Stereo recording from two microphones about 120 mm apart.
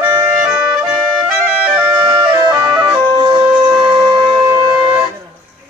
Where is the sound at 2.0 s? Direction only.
45° right (ahead or behind).